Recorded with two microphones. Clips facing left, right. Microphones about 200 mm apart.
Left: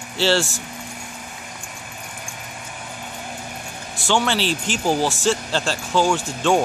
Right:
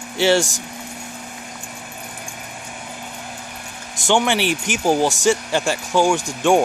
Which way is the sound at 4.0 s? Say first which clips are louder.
Right 3 dB; 15° right (ahead or behind).